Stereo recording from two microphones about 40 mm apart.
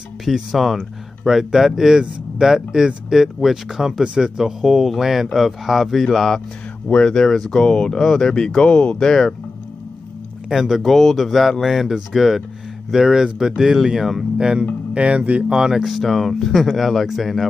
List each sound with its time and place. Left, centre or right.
0.2 s speech: centre
1.2 s speech: centre
4.0 s speech: right
4.4 s speech: centre
6.1 s speech: centre
6.9 s speech: left
7.2 s speech: centre
10.5 s speech: centre; by 15.4 s right
15.4 s speech: centre